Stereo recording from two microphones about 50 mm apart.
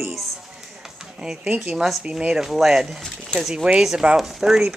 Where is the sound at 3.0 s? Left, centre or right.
Centre.